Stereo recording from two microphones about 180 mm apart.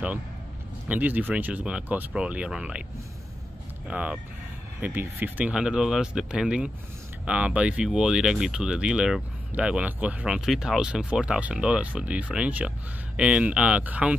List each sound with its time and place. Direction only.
0.8 s speech: 10° right (ahead or behind)
3.8 s speech: 5° right (ahead or behind)